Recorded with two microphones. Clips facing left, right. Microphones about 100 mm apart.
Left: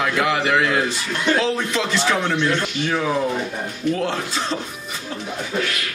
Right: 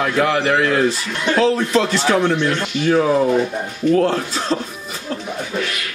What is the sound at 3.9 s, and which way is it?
Speech, 40° right (ahead or behind).